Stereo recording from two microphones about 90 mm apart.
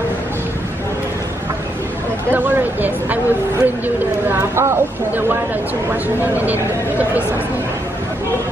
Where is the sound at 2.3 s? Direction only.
20° right (ahead or behind).